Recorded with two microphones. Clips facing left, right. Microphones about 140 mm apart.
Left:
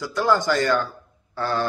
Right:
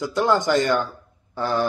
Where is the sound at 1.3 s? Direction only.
15° right (ahead or behind).